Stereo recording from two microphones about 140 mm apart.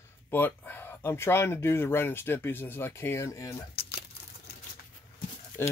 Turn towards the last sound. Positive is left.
turn(degrees=20)  # may be behind; listen again after turning